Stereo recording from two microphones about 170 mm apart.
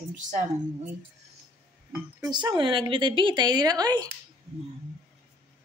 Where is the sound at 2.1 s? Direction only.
25° right (ahead or behind).